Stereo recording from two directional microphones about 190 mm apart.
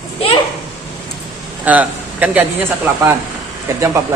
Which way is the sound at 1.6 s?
10° right (ahead or behind).